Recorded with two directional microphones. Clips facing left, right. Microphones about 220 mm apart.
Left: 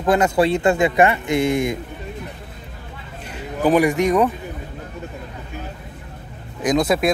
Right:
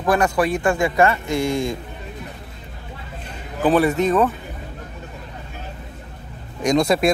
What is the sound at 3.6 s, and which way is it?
Speech, 15° left (ahead or behind).